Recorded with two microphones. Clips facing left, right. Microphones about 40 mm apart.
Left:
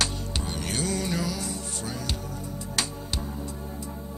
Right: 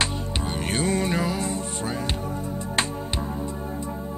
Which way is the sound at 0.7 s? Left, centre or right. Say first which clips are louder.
Right 5 dB; right.